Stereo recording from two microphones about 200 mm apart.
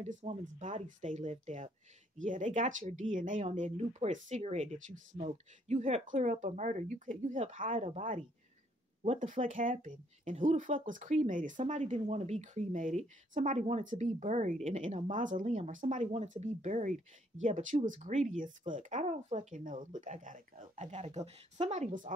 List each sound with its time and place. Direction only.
0.0 s speech: 35° right (ahead or behind)